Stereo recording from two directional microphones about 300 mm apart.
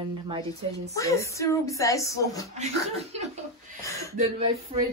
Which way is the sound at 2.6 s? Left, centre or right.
Right.